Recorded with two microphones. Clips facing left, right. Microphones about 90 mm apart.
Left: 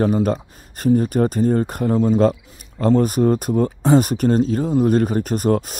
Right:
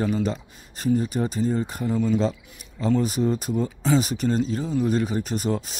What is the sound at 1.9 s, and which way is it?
Speech, 45° left (ahead or behind).